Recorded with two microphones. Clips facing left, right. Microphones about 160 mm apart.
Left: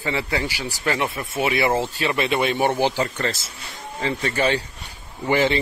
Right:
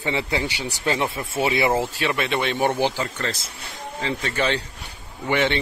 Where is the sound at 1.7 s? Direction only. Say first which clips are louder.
Even; 5° right (ahead or behind).